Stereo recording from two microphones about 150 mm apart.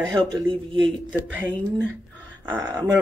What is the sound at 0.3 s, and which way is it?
Speech, 35° right (ahead or behind).